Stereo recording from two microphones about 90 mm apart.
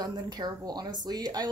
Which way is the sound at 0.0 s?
50° right (ahead or behind).